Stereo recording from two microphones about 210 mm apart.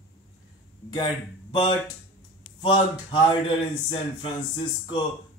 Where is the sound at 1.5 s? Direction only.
25° left (ahead or behind).